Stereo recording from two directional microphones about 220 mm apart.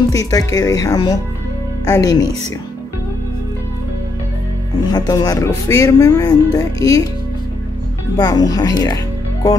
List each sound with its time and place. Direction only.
0.1 s speech: 15° left (ahead or behind)
4.8 s speech: 20° left (ahead or behind)
8.2 s speech: 15° left (ahead or behind)